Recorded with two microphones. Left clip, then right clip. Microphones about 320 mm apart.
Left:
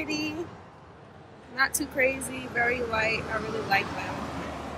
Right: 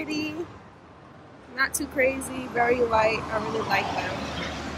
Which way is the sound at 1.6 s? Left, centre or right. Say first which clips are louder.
Right 1 dB; centre.